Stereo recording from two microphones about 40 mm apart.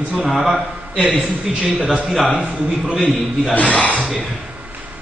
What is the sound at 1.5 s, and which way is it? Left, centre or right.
Speech, centre.